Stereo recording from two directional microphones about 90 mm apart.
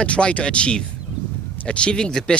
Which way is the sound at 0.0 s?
15° left (ahead or behind).